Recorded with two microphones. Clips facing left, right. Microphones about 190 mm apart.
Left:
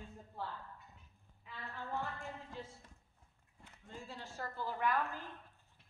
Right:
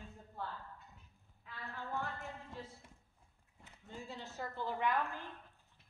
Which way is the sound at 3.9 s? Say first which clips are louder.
Right 2 dB; 10° right (ahead or behind).